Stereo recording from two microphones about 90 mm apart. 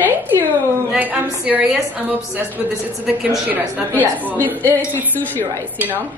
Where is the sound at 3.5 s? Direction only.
20° right (ahead or behind).